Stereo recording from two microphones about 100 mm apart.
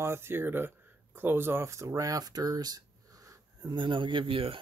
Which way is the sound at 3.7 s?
55° right (ahead or behind).